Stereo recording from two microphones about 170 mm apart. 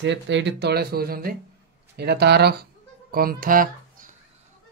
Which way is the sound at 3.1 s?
60° right (ahead or behind).